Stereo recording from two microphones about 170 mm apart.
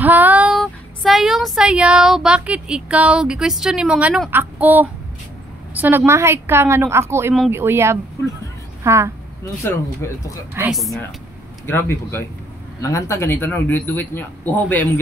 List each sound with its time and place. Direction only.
0.0 s a woman's voice: 10° right (ahead or behind)
9.6 s speech: 15° left (ahead or behind)
10.7 s speech: centre (ahead or behind)
11.6 s speech: 15° left (ahead or behind)